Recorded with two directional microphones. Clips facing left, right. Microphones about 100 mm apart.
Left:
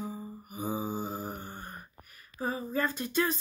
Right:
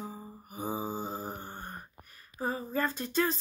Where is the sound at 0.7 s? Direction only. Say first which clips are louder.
Left 1 dB; 30° right (ahead or behind).